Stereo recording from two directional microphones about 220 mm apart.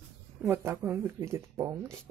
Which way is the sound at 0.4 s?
10° right (ahead or behind).